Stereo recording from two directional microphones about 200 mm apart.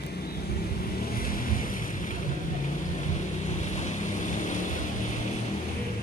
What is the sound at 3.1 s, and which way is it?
Vehicle, 35° left (ahead or behind).